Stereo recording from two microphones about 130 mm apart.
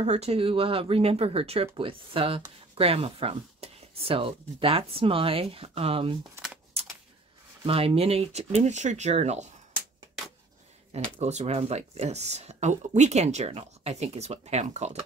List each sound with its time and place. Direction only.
0.0 s speech: 55° right (ahead or behind)
6.8 s a sound: 50° right (ahead or behind)
7.6 s speech: 45° right (ahead or behind)
11.1 s speech: 55° right (ahead or behind)